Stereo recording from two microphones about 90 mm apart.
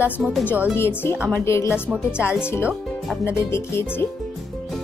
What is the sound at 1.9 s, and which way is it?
Speech, 10° right (ahead or behind).